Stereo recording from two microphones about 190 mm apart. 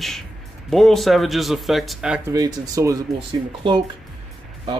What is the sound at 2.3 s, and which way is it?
Speech, 20° right (ahead or behind).